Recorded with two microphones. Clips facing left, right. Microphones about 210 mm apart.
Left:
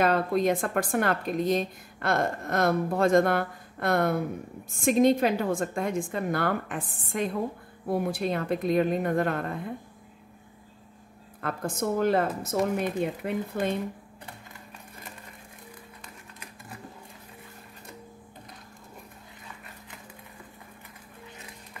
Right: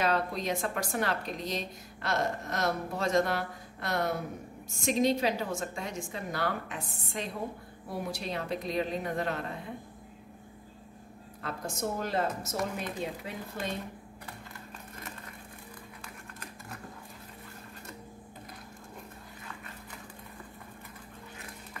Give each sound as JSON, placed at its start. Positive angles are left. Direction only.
{"t": 0.0, "sound": "speech", "side_deg": 55}
{"t": 11.4, "sound": "speech", "side_deg": 55}